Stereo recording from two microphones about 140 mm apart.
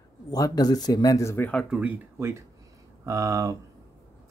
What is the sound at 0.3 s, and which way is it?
Speech, 30° left (ahead or behind).